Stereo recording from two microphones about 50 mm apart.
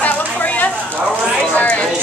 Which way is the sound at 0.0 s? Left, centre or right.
Left.